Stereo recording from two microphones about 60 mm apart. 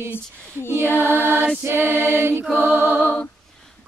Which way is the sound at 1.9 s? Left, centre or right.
Left.